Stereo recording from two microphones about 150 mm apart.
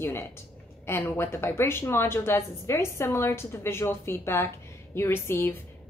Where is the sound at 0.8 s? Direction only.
15° left (ahead or behind).